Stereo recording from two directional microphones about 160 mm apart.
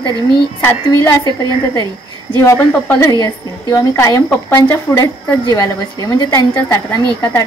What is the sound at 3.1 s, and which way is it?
A woman's voice, 25° left (ahead or behind).